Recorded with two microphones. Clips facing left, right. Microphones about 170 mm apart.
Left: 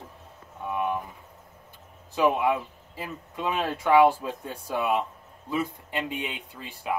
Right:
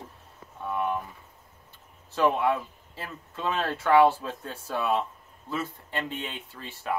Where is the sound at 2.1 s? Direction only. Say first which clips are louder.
Left 1 dB; 10° left (ahead or behind).